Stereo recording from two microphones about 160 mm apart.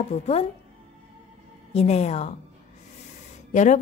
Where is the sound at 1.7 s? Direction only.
45° left (ahead or behind).